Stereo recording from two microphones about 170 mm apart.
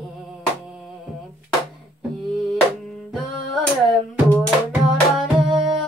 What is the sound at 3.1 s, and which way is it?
Music, centre (ahead or behind).